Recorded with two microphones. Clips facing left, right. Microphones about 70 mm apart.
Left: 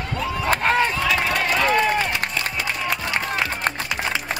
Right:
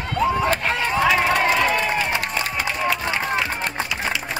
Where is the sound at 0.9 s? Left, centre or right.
Right.